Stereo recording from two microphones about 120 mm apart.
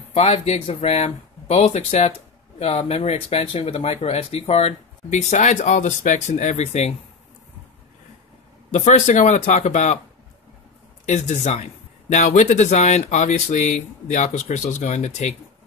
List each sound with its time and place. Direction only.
0.1 s speech: 65° left (ahead or behind)
8.7 s speech: 70° left (ahead or behind)
11.1 s speech: 70° left (ahead or behind)